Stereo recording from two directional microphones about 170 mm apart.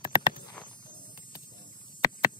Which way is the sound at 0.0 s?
25° left (ahead or behind).